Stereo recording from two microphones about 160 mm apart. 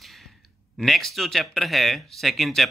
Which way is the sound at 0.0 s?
Centre (ahead or behind).